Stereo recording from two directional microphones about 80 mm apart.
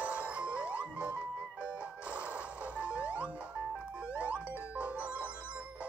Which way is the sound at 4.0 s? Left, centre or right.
Centre.